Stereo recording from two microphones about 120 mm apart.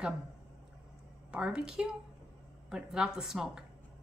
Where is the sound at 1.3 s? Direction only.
5° right (ahead or behind).